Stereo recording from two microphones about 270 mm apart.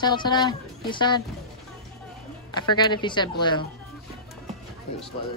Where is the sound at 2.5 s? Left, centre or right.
Centre.